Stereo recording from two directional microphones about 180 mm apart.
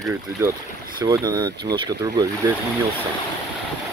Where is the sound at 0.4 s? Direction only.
10° right (ahead or behind).